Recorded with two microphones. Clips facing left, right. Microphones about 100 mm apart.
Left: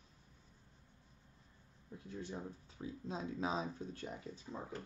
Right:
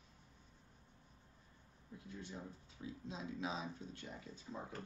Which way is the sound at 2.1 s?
40° left (ahead or behind).